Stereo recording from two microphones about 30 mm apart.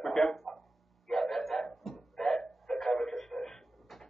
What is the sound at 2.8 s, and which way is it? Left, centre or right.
Radio, centre.